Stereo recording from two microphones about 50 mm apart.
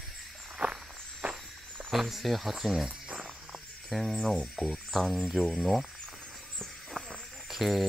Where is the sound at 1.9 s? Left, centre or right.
Centre.